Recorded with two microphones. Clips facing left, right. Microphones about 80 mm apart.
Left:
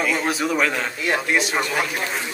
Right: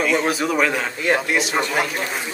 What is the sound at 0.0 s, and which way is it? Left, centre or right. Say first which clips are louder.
Speech: right 2 dB; centre.